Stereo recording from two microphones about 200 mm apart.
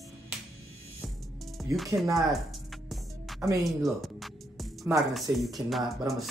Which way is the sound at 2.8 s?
Centre (ahead or behind).